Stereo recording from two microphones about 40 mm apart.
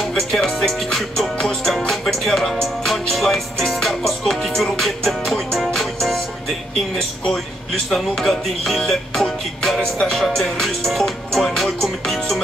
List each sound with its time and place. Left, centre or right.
0.1 s music: centre
7.9 s music: centre
9.8 s music: centre
10.1 s music: centre